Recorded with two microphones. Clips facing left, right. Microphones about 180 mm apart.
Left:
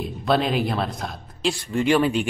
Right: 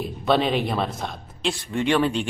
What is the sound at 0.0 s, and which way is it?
A man's voice, centre (ahead or behind).